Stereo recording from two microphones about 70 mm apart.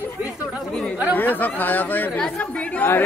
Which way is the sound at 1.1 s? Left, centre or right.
Left.